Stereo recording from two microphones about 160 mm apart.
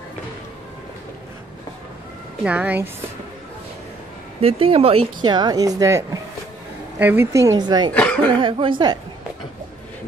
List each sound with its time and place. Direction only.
2.4 s a woman's voice: 10° right (ahead or behind)
4.4 s a woman's voice: 35° right (ahead or behind)
7.9 s speech: 10° left (ahead or behind)
8.3 s speech: 30° right (ahead or behind)